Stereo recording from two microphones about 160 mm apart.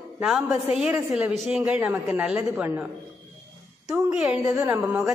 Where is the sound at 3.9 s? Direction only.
10° right (ahead or behind).